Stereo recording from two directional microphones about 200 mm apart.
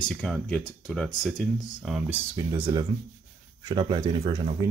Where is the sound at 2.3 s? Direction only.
20° right (ahead or behind).